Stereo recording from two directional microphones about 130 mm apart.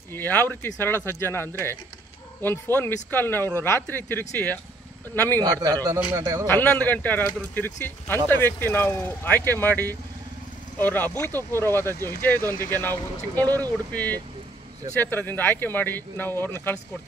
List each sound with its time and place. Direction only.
0.1 s speech: 15° left (ahead or behind)
5.4 s a man's voice: 30° right (ahead or behind)
6.4 s speech: 15° left (ahead or behind)